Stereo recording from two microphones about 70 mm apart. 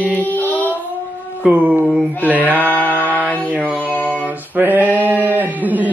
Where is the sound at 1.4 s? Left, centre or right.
Right.